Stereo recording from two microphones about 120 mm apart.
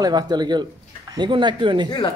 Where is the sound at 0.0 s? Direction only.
35° right (ahead or behind).